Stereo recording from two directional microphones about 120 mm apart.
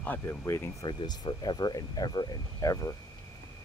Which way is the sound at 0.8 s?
35° left (ahead or behind).